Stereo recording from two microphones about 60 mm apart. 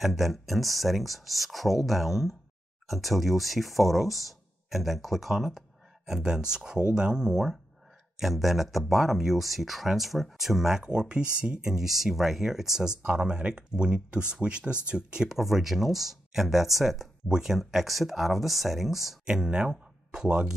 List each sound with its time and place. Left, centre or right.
0.0 s speech: centre
11.7 s speech: centre
15.3 s speech: centre